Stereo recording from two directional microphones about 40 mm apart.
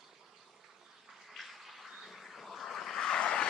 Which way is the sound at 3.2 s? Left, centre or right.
Left.